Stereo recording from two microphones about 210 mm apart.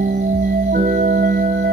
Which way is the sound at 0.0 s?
45° right (ahead or behind).